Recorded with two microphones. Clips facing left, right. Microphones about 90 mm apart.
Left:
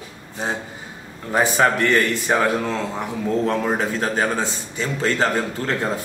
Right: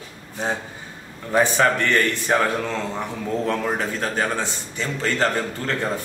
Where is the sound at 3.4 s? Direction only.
25° left (ahead or behind).